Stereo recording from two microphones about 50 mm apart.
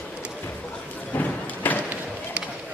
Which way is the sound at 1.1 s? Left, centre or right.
Left.